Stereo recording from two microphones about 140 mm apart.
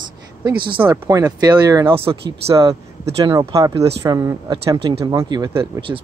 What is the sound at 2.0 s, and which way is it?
Speech, 40° right (ahead or behind).